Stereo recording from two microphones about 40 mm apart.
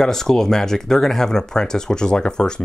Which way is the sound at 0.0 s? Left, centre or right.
Centre.